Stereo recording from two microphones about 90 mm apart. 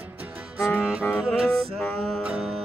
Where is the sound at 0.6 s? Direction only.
20° left (ahead or behind).